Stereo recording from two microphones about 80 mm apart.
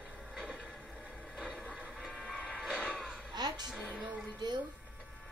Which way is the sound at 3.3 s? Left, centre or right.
Right.